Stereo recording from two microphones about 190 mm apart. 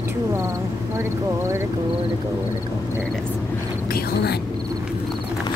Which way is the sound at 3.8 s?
55° left (ahead or behind).